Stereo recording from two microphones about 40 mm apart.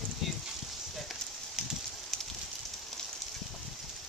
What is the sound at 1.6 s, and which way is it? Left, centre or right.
Fire, centre.